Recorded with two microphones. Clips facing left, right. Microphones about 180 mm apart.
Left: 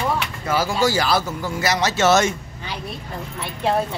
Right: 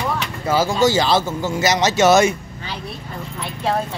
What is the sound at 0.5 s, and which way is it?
Speech, 25° right (ahead or behind).